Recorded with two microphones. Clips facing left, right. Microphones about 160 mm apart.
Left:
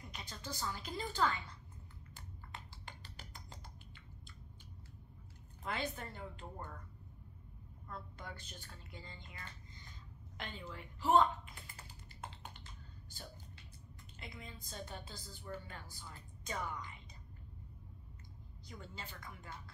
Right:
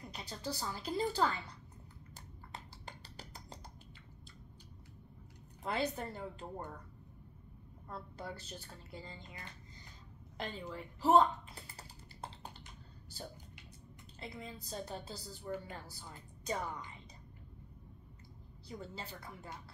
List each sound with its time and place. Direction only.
0.0 s a woman's voice: 35° right (ahead or behind)
2.1 s a sound: 40° right (ahead or behind)
5.6 s a woman's voice: 35° right (ahead or behind)
7.9 s a woman's voice: 35° right (ahead or behind)
10.3 s typing: 40° right (ahead or behind)
14.2 s a woman's voice: 35° right (ahead or behind)
18.7 s a woman's voice: 35° right (ahead or behind)